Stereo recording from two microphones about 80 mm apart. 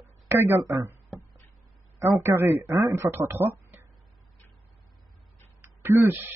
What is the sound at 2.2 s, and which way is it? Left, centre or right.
Speech, right.